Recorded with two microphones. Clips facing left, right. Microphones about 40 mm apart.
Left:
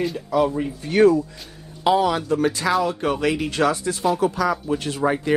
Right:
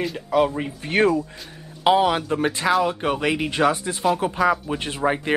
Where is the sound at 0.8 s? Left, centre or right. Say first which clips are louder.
Left 3 dB; right.